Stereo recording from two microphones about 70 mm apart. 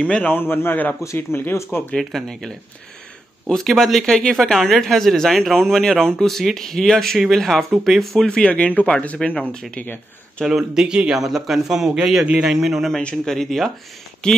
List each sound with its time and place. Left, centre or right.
0.0 s a man's voice: centre
0.3 s a man's voice: left
2.0 s speech: centre
10.4 s a man's voice: centre